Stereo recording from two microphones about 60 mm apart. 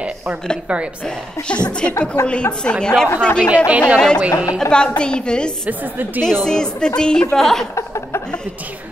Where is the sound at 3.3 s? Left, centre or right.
Right.